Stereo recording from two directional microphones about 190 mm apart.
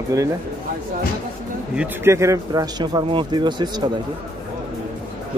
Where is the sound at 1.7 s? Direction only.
10° right (ahead or behind).